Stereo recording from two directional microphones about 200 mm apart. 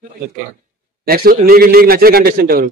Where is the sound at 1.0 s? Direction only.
50° right (ahead or behind).